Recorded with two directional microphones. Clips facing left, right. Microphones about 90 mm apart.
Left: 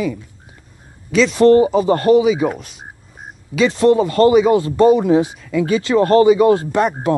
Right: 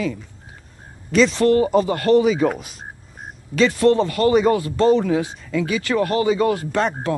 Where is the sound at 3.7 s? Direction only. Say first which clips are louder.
Left 4 dB; 20° left (ahead or behind).